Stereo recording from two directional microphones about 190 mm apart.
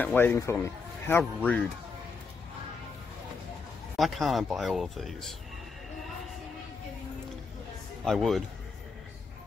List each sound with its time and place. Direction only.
0.0 s speech: 10° left (ahead or behind)
3.9 s speech: centre (ahead or behind)
8.0 s speech: centre (ahead or behind)